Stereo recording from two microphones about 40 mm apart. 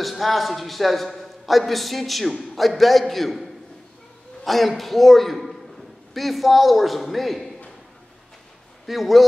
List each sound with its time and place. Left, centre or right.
0.0 s a man's voice: centre
4.5 s a man's voice: centre
8.8 s a man's voice: centre